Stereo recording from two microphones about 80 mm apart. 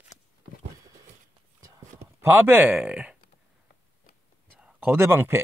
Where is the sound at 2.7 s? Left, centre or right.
Centre.